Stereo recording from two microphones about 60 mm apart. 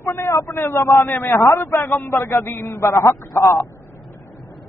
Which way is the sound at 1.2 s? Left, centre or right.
Left.